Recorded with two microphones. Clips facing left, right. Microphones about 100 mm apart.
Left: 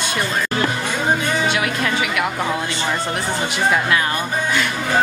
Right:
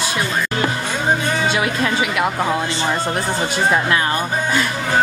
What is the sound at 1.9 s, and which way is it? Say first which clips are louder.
Speech: right 2 dB; 25° right (ahead or behind).